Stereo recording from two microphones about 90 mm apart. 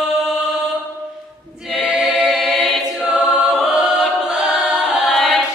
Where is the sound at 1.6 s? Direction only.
5° right (ahead or behind).